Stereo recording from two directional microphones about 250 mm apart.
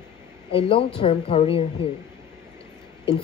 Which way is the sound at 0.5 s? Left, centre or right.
Left.